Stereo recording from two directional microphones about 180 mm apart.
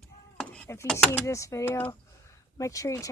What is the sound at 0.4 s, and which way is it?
Speech, 5° left (ahead or behind).